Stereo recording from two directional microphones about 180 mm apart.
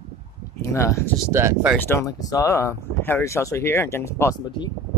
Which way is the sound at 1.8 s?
15° left (ahead or behind).